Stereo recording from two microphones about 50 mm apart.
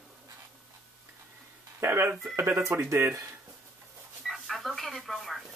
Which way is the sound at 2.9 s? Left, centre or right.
Right.